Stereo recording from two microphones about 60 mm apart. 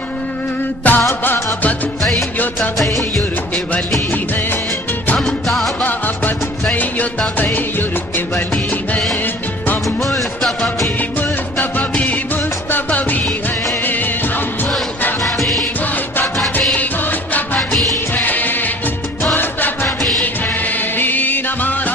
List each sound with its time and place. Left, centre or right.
0.8 s music of bollywood: left
1.2 s music: left
5.2 s music: centre
5.8 s music: left
11.0 s music: left
18.1 s music: left
21.0 s music: left